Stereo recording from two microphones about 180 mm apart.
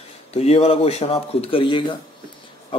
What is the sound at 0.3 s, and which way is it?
Speech, 35° left (ahead or behind).